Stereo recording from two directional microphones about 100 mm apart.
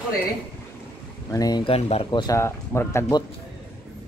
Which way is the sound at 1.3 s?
40° left (ahead or behind).